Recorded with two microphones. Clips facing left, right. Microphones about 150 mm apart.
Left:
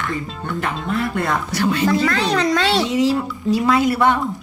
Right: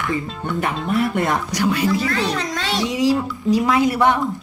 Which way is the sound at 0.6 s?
15° right (ahead or behind).